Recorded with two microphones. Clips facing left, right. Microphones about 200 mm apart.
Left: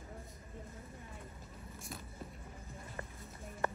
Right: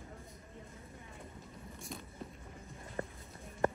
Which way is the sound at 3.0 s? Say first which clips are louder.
Right 8 dB; 30° right (ahead or behind).